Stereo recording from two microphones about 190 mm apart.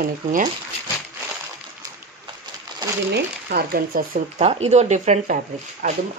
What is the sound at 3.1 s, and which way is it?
Speech, 55° right (ahead or behind).